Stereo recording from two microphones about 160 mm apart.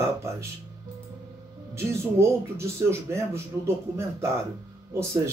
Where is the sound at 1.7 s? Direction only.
15° right (ahead or behind).